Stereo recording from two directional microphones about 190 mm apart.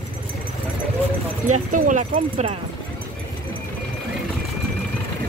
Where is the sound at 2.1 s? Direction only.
30° right (ahead or behind).